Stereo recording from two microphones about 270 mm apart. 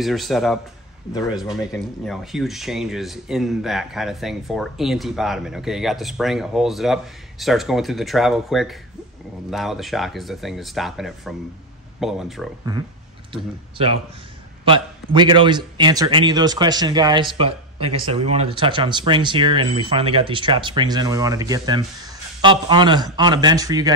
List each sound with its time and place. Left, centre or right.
0.0 s speech: centre
1.1 s speech: centre
1.4 s speech: centre
13.3 s speech: centre